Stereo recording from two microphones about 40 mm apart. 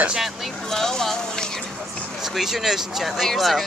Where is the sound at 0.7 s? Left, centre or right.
Centre.